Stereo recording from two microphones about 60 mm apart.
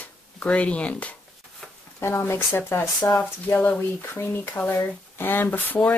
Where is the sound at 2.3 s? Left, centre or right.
Left.